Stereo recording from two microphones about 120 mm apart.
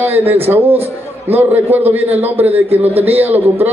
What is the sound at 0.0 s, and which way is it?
A man's voice, 15° right (ahead or behind).